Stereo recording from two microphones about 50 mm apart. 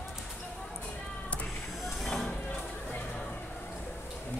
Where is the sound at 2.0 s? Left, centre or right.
Centre.